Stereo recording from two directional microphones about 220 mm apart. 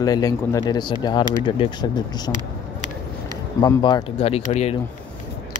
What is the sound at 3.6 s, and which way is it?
Speech, 20° left (ahead or behind).